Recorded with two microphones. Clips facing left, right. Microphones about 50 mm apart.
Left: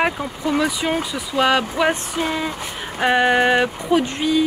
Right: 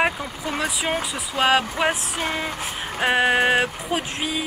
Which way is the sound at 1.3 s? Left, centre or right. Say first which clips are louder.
Left 2 dB; right.